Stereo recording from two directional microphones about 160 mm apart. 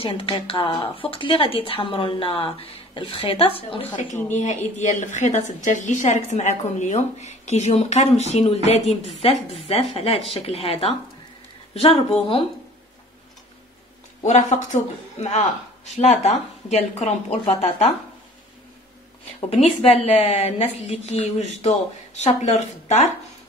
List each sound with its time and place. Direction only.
0.0 s speech: 35° left (ahead or behind)
4.3 s a woman's voice: 50° left (ahead or behind)
14.2 s a woman's voice: 50° left (ahead or behind)
19.5 s speech: 40° left (ahead or behind)